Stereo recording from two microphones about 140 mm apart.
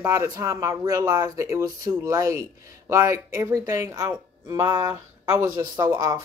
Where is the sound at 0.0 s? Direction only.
15° right (ahead or behind).